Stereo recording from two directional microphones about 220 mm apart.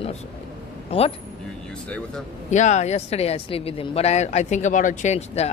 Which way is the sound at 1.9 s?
5° left (ahead or behind).